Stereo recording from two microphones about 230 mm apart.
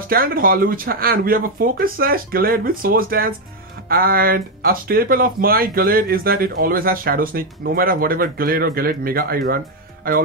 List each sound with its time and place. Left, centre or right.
0.1 s speech: right